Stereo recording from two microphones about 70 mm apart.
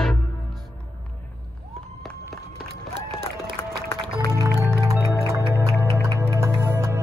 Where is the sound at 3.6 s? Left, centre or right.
Left.